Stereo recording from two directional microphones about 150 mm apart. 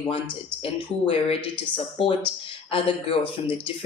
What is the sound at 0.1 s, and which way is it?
Speech, 40° left (ahead or behind).